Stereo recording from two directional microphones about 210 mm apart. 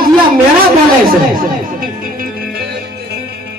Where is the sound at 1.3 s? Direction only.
40° right (ahead or behind).